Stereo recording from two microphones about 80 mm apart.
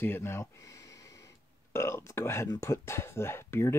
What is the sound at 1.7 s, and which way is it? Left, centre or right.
Speech, left.